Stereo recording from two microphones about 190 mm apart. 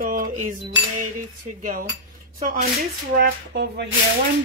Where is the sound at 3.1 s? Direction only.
65° right (ahead or behind).